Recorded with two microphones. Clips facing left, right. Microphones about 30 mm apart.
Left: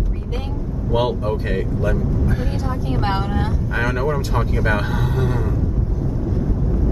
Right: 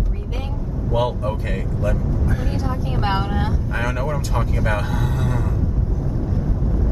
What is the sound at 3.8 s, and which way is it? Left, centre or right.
Speech, centre.